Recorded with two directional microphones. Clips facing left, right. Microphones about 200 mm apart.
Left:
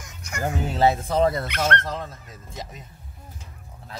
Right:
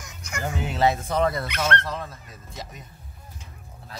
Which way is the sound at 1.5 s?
50° left (ahead or behind).